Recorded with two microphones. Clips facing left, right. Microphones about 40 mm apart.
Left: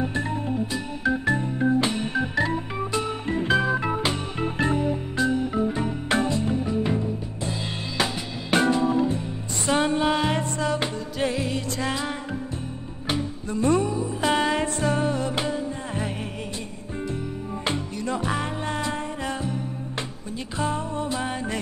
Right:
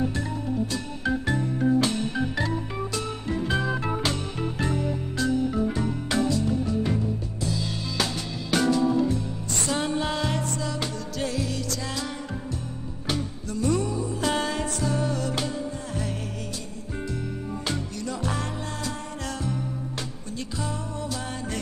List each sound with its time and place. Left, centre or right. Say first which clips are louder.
0.0 s organ: left 2 dB; left
0.7 s organ: left 2 dB; centre
1.2 s organ: left 2 dB; left
3.3 s music: left 4 dB; left
3.6 s music: left 3 dB; left
4.5 s organ: left 5 dB; left
6.0 s music: left 1 dB; left
15.1 s music: left 3 dB; left
17.6 s music: left 5 dB; left